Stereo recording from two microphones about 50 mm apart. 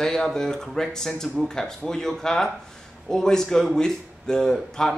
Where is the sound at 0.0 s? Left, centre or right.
Centre.